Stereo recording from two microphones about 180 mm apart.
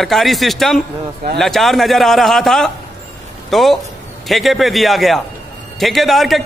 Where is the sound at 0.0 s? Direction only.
Centre (ahead or behind).